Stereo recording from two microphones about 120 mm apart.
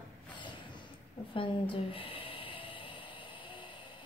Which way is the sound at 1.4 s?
45° left (ahead or behind).